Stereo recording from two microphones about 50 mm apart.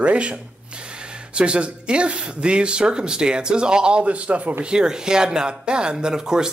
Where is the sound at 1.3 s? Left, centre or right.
Right.